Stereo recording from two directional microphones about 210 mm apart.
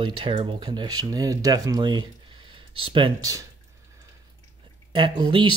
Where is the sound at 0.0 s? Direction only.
25° right (ahead or behind).